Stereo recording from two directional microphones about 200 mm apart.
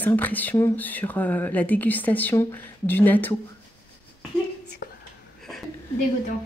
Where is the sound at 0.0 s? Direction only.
10° left (ahead or behind).